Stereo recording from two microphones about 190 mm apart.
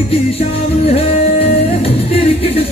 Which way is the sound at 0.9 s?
30° left (ahead or behind).